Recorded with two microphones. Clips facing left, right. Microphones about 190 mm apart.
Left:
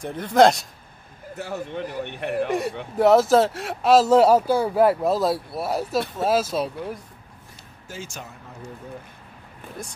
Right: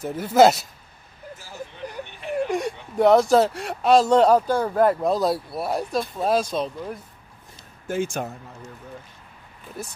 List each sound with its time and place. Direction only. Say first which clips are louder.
0.0 s speech: right 1 dB; 5° right (ahead or behind)
1.3 s speech: left 9 dB; 65° left (ahead or behind)
3.0 s speech: even; centre (ahead or behind)
7.9 s speech: right 11 dB; 55° right (ahead or behind)
9.8 s speech: right 2 dB; 5° right (ahead or behind)